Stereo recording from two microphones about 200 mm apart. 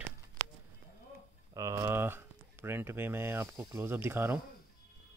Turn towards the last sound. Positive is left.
turn(degrees=-10)  # may be behind; listen again after turning